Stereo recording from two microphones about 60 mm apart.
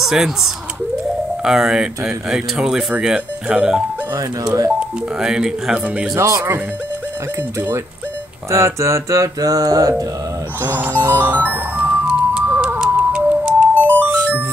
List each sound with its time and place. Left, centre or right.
0.0 s speech: centre
4.1 s speech: right
4.7 s speech: centre
6.1 s speech: right
8.5 s mantra: right
10.6 s music: right
11.7 s music: right
13.8 s music: right